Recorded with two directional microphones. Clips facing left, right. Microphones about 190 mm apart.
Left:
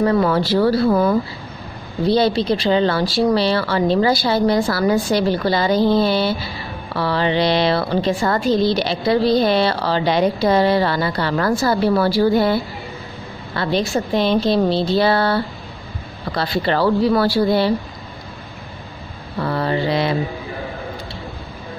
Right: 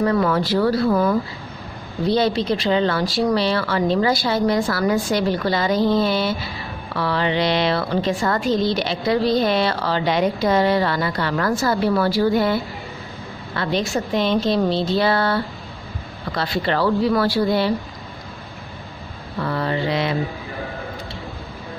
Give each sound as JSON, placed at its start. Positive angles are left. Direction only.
{"t": 0.0, "sound": "a woman's voice", "side_deg": 30}
{"t": 19.3, "sound": "mantra", "side_deg": 35}